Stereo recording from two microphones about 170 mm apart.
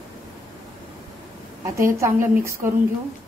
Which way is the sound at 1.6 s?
15° right (ahead or behind).